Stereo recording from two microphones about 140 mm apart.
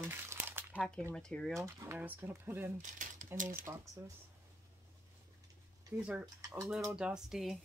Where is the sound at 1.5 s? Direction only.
20° right (ahead or behind).